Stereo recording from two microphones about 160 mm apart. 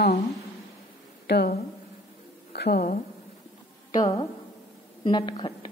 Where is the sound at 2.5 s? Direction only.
85° left.